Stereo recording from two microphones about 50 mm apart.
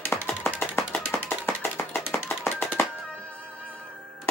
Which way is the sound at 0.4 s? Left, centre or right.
Left.